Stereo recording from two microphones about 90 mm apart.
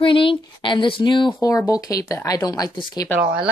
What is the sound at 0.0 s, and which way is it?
Speech, 70° left (ahead or behind).